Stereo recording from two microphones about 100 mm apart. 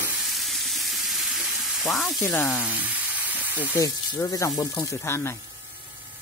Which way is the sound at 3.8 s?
35° left (ahead or behind).